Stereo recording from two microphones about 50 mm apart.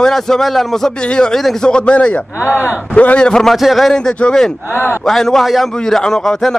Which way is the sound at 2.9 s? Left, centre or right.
Left.